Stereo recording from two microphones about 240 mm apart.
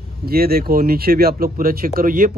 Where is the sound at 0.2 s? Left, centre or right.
Right.